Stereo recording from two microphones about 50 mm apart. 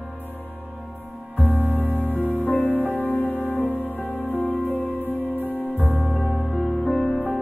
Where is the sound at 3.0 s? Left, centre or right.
Left.